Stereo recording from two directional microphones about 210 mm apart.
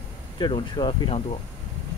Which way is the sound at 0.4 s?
20° left (ahead or behind).